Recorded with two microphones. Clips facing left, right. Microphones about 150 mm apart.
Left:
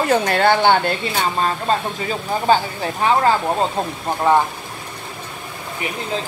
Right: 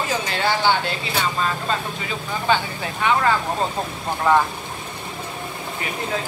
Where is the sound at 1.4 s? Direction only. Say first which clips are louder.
Left 4 dB; 40° left (ahead or behind).